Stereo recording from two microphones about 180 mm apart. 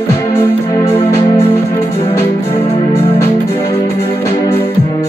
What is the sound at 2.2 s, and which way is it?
Music, 35° left (ahead or behind).